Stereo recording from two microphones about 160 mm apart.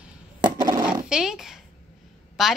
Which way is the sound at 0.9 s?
5° right (ahead or behind).